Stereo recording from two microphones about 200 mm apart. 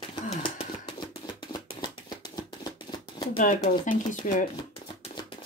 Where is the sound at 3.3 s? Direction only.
40° left (ahead or behind).